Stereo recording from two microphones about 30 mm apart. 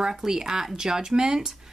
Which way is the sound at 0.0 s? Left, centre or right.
Right.